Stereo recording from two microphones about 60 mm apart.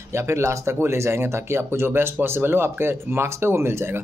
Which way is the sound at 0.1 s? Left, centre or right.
Right.